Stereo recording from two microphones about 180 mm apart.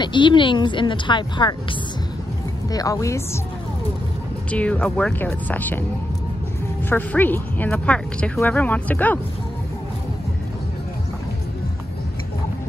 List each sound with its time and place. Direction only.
0.0 s speech: 25° left (ahead or behind)
4.5 s speech: 5° left (ahead or behind)
6.9 s speech: 10° left (ahead or behind)